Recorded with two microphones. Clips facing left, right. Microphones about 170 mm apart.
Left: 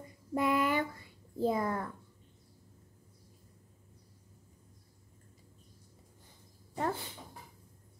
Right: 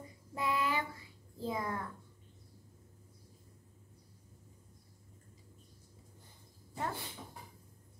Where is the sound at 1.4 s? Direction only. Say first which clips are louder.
Left 7 dB; 50° left (ahead or behind).